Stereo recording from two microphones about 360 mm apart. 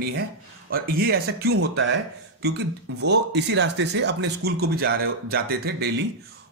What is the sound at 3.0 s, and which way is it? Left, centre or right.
Speech, right.